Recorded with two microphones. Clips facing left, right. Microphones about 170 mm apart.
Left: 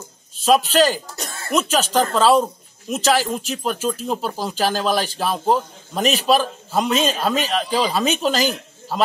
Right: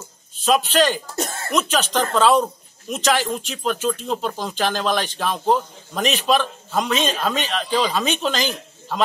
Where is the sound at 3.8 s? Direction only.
5° left (ahead or behind).